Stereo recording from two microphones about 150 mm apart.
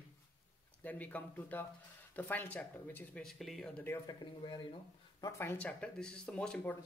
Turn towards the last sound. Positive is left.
turn(degrees=5)  # may be behind; listen again after turning